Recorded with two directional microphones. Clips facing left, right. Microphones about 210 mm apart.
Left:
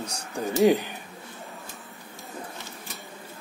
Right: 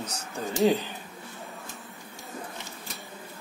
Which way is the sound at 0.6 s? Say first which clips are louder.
Left 3 dB; 15° left (ahead or behind).